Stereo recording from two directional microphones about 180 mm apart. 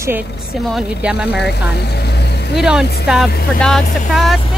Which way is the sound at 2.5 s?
Centre (ahead or behind).